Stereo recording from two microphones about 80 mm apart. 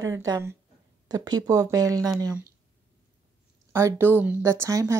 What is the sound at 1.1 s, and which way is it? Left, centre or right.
Speech, right.